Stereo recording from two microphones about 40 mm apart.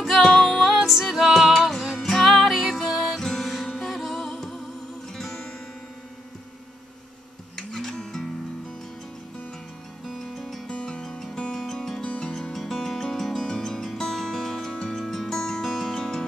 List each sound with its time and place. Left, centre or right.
0.2 s music: centre
2.0 s music: centre
2.4 s music: centre
3.2 s music: centre
7.5 s music: centre
10.1 s music: centre
10.7 s music: left
11.0 s music: centre
12.0 s music: left
12.5 s music: centre